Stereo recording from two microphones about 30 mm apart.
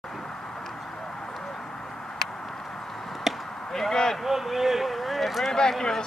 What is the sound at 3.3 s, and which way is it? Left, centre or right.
Chop, centre.